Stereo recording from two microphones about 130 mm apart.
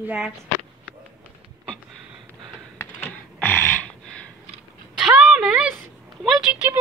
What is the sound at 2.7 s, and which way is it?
Computer keyboard, 15° left (ahead or behind).